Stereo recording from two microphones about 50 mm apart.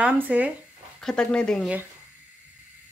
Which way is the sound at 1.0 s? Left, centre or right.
Centre.